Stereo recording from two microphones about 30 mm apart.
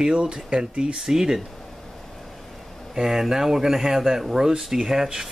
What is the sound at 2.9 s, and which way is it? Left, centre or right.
Speech, centre.